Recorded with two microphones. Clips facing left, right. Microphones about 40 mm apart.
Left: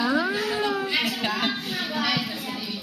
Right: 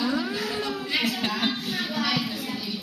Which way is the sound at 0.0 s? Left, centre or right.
Left.